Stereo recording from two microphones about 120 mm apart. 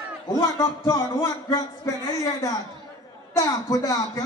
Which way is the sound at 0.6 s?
25° left (ahead or behind).